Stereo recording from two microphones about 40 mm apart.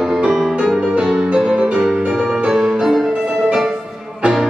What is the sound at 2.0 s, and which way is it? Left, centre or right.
Music, centre.